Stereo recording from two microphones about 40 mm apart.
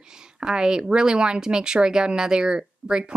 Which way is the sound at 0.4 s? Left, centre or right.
Right.